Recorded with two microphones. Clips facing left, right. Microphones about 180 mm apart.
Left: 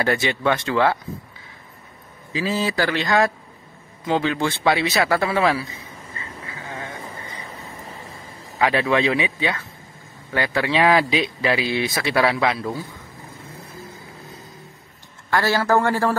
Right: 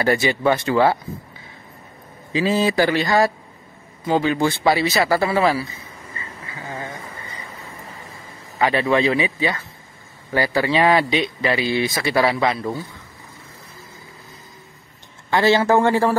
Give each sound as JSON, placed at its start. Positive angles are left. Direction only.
{"t": 0.0, "sound": "speech", "side_deg": -5}
{"t": 2.3, "sound": "speech", "side_deg": -20}
{"t": 8.5, "sound": "speech", "side_deg": 0}
{"t": 15.2, "sound": "speech", "side_deg": -20}